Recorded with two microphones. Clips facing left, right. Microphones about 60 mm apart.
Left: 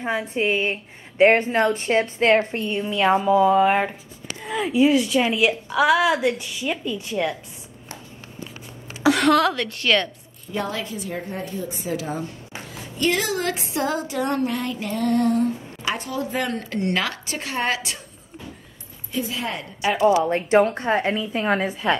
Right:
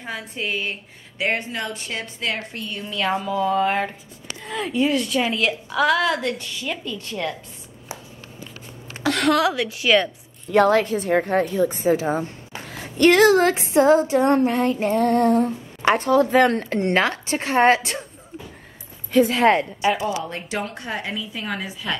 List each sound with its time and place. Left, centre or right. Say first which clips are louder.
0.0 s a woman's voice: left 6 dB; left; by 7.3 s centre
9.0 s a woman's voice: left 2 dB; centre
10.5 s a woman's voice: right 11 dB; right
11.8 s female singing: right 7 dB; right
12.6 s a sound: right 7 dB; right
13.5 s female singing: right 9 dB; right
19.1 s a woman's voice: right 11 dB; right
20.1 s a woman's voice: left 9 dB; left